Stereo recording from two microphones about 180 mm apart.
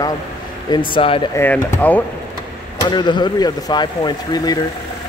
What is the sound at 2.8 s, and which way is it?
Speech, 25° left (ahead or behind).